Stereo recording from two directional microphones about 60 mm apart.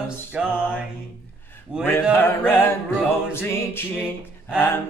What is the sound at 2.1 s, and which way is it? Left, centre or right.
Music, left.